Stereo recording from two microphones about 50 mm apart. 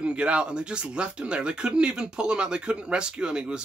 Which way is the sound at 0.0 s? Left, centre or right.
Right.